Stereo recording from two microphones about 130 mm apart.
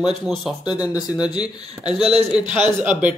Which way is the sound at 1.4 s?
5° right (ahead or behind).